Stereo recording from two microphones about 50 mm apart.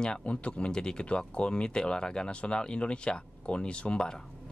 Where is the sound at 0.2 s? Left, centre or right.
Left.